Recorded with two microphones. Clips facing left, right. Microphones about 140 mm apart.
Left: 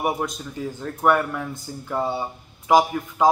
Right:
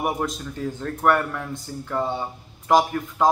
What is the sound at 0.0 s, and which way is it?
A man's voice, centre (ahead or behind).